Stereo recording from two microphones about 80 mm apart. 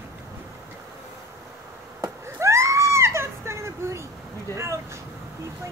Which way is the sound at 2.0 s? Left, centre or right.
Right.